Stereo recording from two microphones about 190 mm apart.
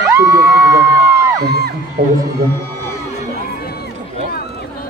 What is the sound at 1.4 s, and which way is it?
Music, 60° right (ahead or behind).